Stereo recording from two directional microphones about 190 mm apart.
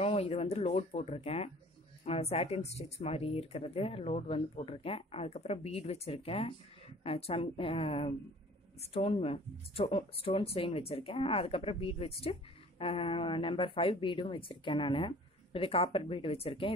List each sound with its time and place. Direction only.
0.0 s speech: 30° left (ahead or behind)